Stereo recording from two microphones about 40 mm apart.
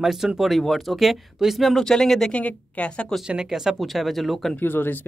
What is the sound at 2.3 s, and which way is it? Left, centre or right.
Speech, left.